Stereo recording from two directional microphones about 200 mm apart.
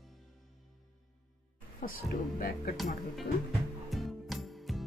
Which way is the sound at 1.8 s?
45° left (ahead or behind).